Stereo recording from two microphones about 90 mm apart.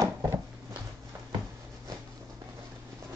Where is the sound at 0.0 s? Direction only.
40° right (ahead or behind).